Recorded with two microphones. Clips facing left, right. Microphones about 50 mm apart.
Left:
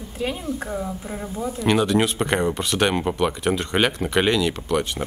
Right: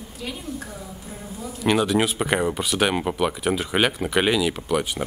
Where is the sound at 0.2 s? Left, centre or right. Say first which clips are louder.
Left 6 dB; left.